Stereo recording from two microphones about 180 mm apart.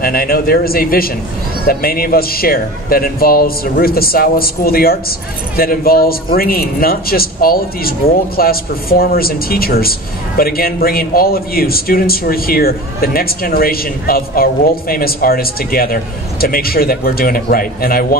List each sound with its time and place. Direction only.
0.0 s speech: 55° left (ahead or behind)